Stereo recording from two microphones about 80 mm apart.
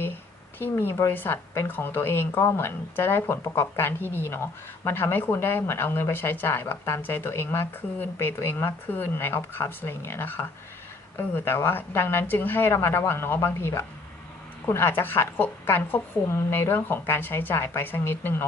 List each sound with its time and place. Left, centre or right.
0.6 s speech: left